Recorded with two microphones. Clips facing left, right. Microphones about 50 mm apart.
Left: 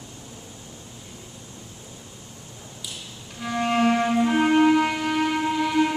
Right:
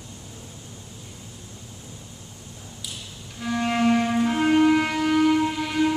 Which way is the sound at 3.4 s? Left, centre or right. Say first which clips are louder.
Left 1 dB; centre.